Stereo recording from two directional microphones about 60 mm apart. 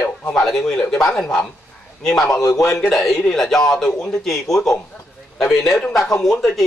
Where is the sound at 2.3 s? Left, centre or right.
Left.